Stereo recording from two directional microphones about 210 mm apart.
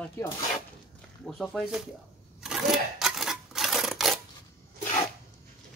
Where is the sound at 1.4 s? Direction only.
Centre (ahead or behind).